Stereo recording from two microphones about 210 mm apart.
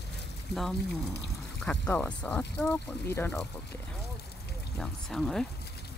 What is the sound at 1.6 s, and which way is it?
Speech, 5° left (ahead or behind).